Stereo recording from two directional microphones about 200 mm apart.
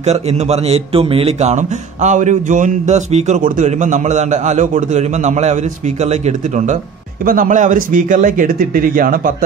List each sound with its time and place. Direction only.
0.0 s a man's voice: 35° right (ahead or behind)